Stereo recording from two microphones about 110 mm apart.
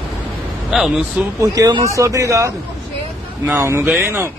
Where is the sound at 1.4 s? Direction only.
30° right (ahead or behind).